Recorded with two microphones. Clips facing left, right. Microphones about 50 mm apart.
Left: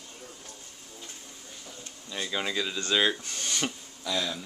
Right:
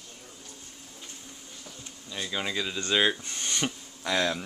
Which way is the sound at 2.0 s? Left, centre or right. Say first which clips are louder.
Left 1 dB; centre.